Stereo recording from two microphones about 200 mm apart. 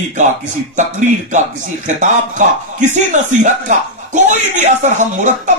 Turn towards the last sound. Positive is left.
turn(degrees=-35)  # may be behind; listen again after turning